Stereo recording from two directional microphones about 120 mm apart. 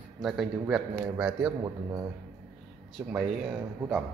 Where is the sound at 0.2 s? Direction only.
Centre (ahead or behind).